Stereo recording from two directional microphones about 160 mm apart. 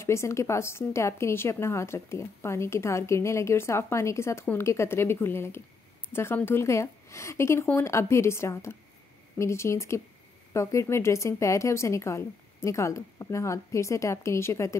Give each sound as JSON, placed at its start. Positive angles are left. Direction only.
{"t": 0.0, "sound": "a woman's voice", "side_deg": 15}